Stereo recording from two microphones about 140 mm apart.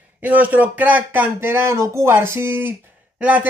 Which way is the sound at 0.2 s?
10° right (ahead or behind).